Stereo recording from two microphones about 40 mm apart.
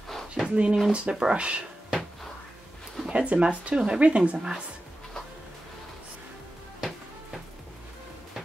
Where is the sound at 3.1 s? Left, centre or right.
Right.